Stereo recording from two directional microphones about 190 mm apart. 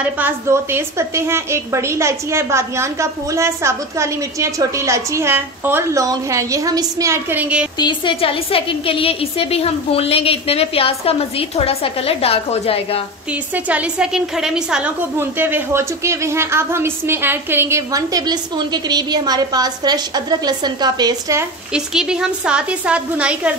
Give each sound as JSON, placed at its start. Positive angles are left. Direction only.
{"t": 0.0, "sound": "a woman's voice", "side_deg": -10}
{"t": 7.8, "sound": "a woman's voice", "side_deg": 25}
{"t": 13.3, "sound": "a woman's voice", "side_deg": -5}
{"t": 21.7, "sound": "a woman's voice", "side_deg": -5}